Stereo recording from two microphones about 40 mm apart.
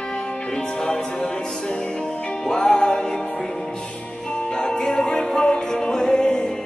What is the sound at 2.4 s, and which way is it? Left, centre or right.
Music, centre.